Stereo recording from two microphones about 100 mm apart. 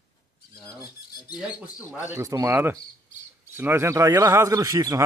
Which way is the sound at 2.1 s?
30° right (ahead or behind).